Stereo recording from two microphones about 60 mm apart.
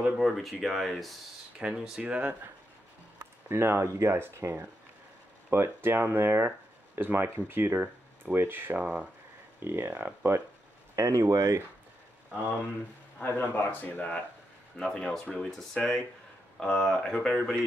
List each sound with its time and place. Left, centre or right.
0.2 s speech: centre
1.6 s speech: centre
3.2 s speech: right
8.8 s speech: right
9.6 s speech: right
11.0 s speech: right
13.2 s speech: left
14.8 s speech: centre